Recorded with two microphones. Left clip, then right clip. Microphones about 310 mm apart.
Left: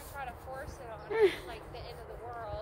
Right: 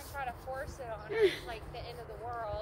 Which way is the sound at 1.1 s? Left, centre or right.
Centre.